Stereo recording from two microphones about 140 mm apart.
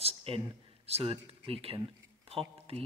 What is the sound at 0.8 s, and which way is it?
Speech, 45° right (ahead or behind).